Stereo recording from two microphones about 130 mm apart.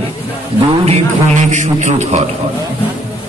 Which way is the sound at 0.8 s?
70° right (ahead or behind).